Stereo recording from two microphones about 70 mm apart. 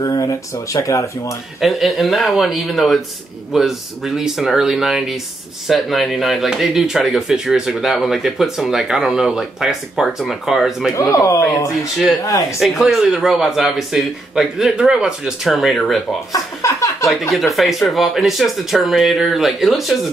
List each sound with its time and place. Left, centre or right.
0.0 s speech: left
1.6 s speech: centre
10.9 s speech: left
12.5 s speech: centre
15.4 s speech: centre
16.3 s a sound: left
17.6 s speech: centre